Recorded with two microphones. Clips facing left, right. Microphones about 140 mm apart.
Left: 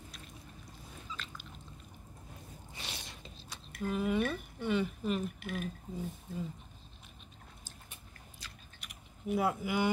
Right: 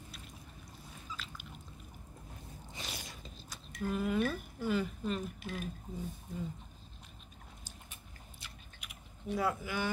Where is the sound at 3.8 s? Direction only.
Centre (ahead or behind).